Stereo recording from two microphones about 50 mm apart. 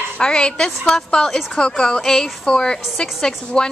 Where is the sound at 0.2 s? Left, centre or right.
Centre.